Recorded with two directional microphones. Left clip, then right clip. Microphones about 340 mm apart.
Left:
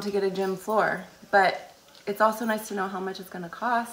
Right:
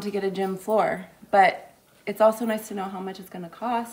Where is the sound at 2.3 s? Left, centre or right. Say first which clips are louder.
Even; centre.